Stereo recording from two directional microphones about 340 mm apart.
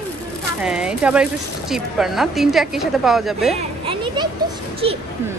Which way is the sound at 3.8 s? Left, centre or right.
Centre.